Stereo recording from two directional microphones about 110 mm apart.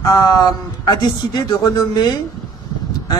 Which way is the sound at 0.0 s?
35° left (ahead or behind).